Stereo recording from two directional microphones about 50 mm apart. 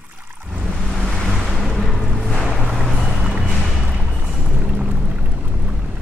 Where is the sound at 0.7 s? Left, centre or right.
Centre.